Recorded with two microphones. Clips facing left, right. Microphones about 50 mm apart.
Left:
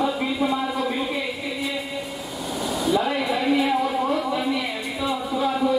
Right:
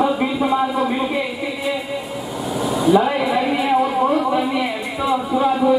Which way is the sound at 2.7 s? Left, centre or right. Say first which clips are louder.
Right 7 dB; centre.